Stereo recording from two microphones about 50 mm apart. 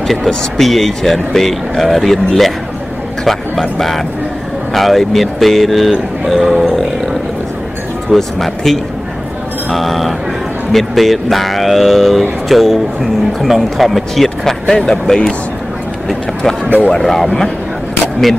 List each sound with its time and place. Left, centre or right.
0.0 s speech: centre
3.7 s speech: centre
8.1 s speech: centre
16.6 s speech: left
16.9 s speech: centre